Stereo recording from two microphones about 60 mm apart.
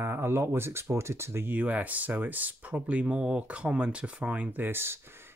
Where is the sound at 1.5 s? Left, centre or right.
Right.